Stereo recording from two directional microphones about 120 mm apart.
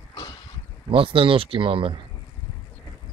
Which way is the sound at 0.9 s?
45° right (ahead or behind).